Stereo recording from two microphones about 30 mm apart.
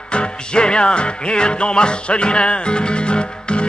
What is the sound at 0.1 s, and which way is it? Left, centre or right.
Music, left.